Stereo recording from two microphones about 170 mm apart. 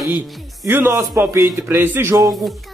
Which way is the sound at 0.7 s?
15° right (ahead or behind).